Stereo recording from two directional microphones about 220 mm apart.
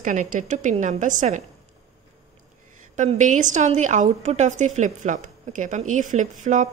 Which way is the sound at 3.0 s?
35° right (ahead or behind).